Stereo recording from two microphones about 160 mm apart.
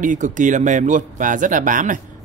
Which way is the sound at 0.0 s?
55° right (ahead or behind).